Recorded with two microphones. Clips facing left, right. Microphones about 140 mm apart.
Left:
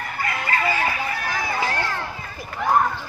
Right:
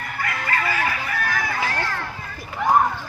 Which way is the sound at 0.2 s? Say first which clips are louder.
Left 1 dB; 25° left (ahead or behind).